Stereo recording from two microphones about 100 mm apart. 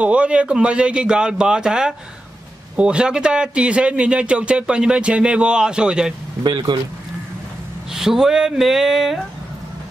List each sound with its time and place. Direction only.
0.0 s a man's voice: 10° right (ahead or behind)
6.4 s speech: 45° right (ahead or behind)
7.9 s speech: 5° right (ahead or behind)